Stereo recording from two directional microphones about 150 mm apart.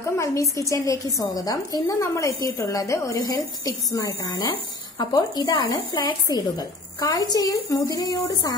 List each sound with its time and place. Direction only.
0.2 s a woman's voice: 20° left (ahead or behind)